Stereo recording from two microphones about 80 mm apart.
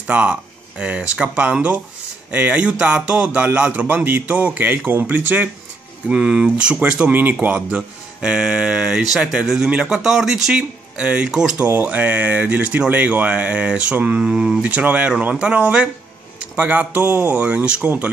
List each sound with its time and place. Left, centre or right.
0.0 s speech: centre
6.0 s speech: centre